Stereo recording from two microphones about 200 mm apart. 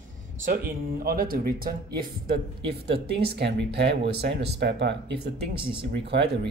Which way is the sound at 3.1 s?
55° right (ahead or behind).